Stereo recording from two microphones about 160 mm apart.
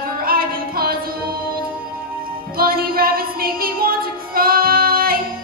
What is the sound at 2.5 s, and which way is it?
Music, 65° right (ahead or behind).